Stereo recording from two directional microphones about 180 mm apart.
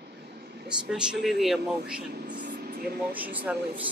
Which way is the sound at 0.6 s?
5° right (ahead or behind).